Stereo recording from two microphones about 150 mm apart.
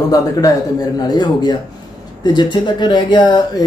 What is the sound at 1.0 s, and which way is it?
Speech, 30° left (ahead or behind).